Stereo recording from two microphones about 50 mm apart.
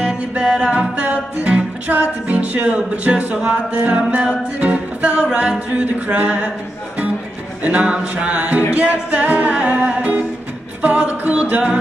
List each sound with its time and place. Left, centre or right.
0.0 s music: right
7.6 s music: right